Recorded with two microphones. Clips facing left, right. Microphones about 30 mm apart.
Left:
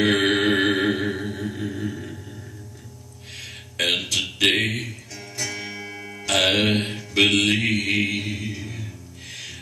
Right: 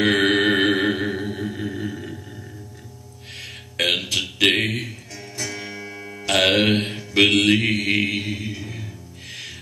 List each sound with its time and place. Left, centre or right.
0.0 s music: centre
1.4 s a sound: centre
3.3 s music: centre
3.7 s a sound: centre
5.1 s music: centre
6.2 s mantra: centre
9.3 s music: centre